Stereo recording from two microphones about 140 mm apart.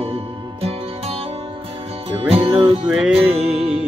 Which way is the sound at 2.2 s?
40° right (ahead or behind).